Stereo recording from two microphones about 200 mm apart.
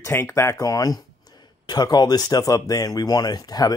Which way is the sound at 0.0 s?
10° left (ahead or behind).